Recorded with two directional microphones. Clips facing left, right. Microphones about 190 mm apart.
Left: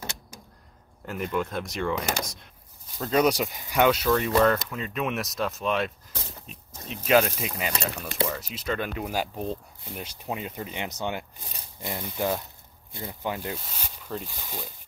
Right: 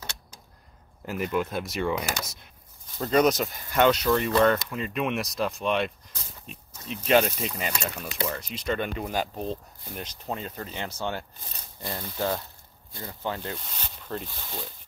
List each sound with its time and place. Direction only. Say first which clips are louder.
1.0 s speech: right 1 dB; 5° right (ahead or behind)
6.4 s a sound: even; centre (ahead or behind)
7.1 s speech: even; centre (ahead or behind)